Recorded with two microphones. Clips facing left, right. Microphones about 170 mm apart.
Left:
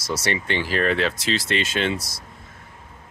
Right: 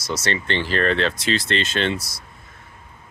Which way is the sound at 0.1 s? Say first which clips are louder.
Right 1 dB; 10° left (ahead or behind).